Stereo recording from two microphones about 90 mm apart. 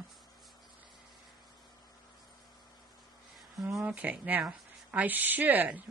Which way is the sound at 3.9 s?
15° right (ahead or behind).